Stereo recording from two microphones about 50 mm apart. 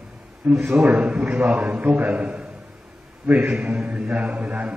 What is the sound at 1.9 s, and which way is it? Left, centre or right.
Mantra, right.